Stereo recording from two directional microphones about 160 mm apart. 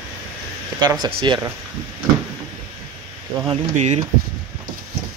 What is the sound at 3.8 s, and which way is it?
Speech, 45° right (ahead or behind).